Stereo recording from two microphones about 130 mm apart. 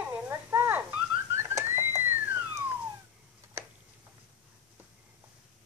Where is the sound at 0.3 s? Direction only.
20° right (ahead or behind).